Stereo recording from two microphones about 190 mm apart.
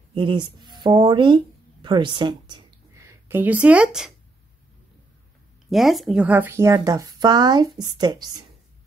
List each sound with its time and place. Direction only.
0.1 s speech: 25° right (ahead or behind); by 4.1 s 5° right (ahead or behind)
5.7 s speech: centre (ahead or behind); by 8.5 s 20° right (ahead or behind)